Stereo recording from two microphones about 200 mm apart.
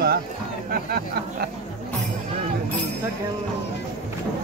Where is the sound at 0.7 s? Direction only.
50° right (ahead or behind).